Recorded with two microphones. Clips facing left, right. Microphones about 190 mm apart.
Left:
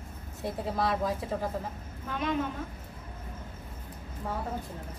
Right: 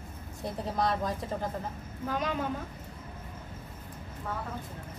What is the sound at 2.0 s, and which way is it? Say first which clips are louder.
Speech: right 1 dB; 35° right (ahead or behind).